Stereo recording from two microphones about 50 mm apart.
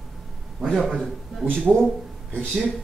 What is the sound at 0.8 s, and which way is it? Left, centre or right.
Speech, centre.